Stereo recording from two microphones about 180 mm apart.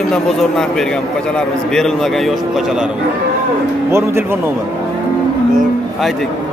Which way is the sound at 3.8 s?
15° right (ahead or behind).